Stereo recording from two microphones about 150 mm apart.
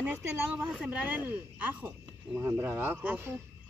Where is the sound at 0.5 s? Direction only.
5° right (ahead or behind).